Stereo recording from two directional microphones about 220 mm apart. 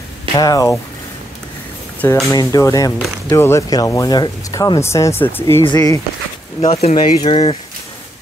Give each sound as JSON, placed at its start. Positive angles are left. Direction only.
{"t": 0.4, "sound": "speech", "side_deg": 15}
{"t": 2.0, "sound": "speech", "side_deg": 5}
{"t": 2.3, "sound": "speech", "side_deg": 15}